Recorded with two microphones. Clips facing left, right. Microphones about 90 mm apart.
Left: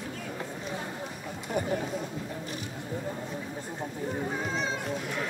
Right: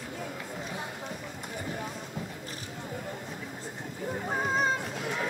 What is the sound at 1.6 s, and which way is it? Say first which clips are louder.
Run: left 8 dB; 60° left (ahead or behind).